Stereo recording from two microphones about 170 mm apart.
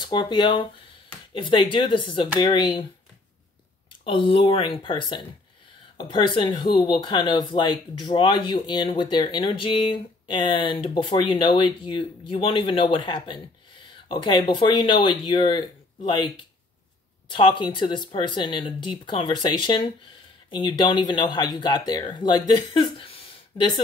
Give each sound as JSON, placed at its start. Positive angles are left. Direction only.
{"t": 0.0, "sound": "speech", "side_deg": 25}
{"t": 4.0, "sound": "speech", "side_deg": 30}
{"t": 17.3, "sound": "speech", "side_deg": 30}
{"t": 22.5, "sound": "a sound", "side_deg": 25}